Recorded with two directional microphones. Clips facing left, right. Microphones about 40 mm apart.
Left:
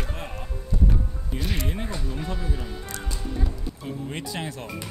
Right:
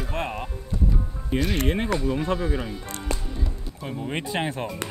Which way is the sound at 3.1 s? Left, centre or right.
Right.